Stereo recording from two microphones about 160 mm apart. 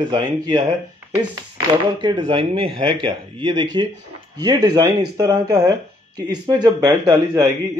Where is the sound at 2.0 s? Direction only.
25° right (ahead or behind).